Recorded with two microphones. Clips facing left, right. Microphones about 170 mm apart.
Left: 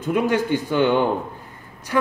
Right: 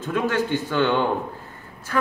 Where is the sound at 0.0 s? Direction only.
15° left (ahead or behind).